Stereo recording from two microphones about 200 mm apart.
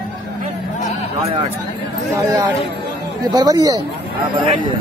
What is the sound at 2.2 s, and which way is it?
Speech, 20° right (ahead or behind).